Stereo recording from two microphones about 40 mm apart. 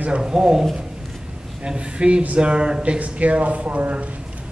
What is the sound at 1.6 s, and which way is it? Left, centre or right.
A man's voice, right.